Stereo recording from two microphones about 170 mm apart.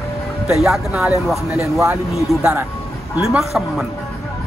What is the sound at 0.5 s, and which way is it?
Speech, centre (ahead or behind).